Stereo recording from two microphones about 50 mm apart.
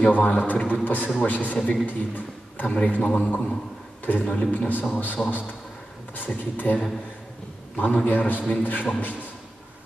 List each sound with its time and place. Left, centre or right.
0.1 s a man's voice: left